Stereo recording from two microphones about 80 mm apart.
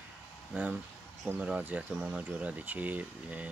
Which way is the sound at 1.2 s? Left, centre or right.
Centre.